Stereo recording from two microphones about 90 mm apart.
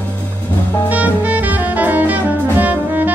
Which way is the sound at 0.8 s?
15° right (ahead or behind).